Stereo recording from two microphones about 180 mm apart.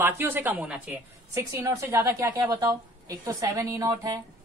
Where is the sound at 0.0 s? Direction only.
10° right (ahead or behind).